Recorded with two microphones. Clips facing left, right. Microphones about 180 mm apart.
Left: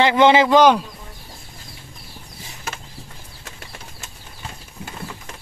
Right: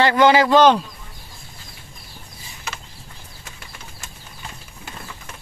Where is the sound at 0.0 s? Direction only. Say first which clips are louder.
Left 1 dB; 20° left (ahead or behind).